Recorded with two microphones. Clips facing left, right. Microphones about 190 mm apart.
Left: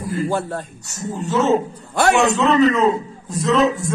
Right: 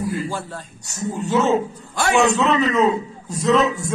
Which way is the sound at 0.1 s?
55° left (ahead or behind).